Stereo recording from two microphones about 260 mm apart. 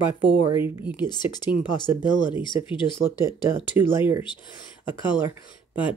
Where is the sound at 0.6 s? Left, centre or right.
Centre.